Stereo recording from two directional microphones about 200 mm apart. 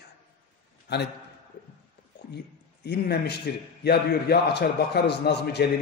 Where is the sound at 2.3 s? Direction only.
55° left (ahead or behind).